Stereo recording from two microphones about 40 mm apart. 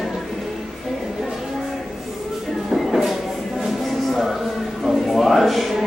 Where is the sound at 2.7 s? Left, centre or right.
Centre.